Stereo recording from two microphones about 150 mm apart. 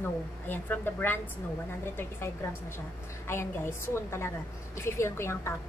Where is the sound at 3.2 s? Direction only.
15° left (ahead or behind).